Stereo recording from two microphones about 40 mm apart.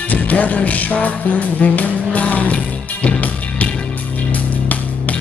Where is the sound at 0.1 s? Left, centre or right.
Left.